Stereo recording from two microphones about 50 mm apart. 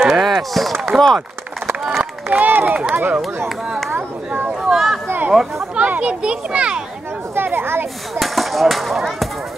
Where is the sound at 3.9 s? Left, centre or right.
Right.